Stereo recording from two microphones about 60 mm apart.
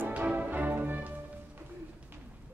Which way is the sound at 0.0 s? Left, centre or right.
Right.